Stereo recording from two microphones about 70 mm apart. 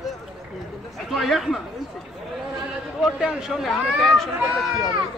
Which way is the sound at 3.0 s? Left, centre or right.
Centre.